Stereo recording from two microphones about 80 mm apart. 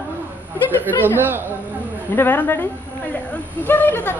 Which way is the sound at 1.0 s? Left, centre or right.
Right.